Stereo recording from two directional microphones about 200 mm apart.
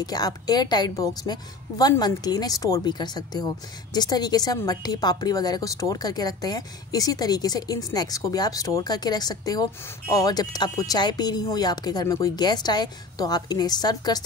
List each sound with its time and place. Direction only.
0.0 s a woman's voice: 20° left (ahead or behind)